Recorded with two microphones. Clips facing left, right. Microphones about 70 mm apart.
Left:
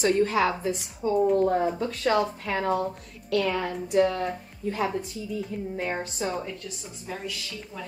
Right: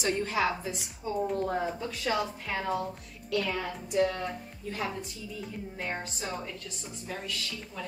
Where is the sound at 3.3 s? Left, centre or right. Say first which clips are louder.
Left 5 dB; left.